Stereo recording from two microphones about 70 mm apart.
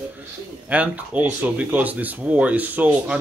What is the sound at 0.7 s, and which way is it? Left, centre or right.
Speech, right.